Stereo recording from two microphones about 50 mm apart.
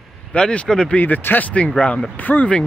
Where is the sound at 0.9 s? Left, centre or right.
Left.